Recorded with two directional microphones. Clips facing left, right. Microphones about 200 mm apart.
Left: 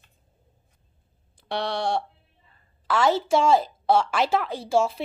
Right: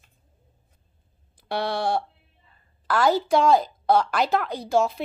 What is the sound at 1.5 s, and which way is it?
A woman's voice, 5° right (ahead or behind).